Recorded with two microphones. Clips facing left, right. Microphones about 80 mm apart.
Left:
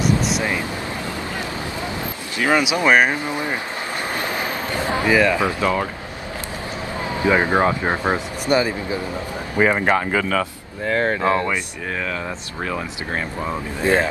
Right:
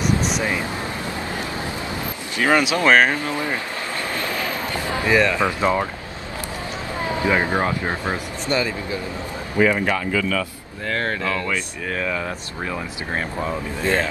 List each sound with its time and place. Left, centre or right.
2.4 s speech: centre
4.1 s a sound: left
5.6 s speech: right
7.0 s speech: left
9.7 s speech: left
10.9 s speech: centre
11.2 s speech: left
11.9 s speech: centre
13.5 s speech: centre